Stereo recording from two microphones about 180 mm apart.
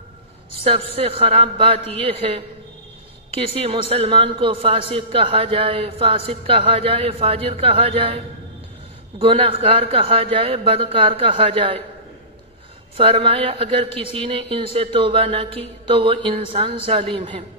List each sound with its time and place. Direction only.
0.7 s a man's voice: 30° right (ahead or behind)
9.2 s a man's voice: 30° right (ahead or behind)
12.9 s a man's voice: 30° right (ahead or behind)